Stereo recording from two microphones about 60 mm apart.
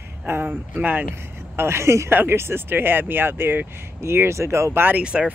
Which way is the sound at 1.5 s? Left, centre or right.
Right.